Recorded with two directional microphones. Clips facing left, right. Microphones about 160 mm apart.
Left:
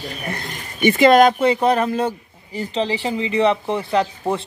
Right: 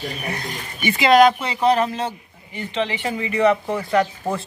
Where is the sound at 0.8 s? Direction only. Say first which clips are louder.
Left 2 dB; 50° left (ahead or behind).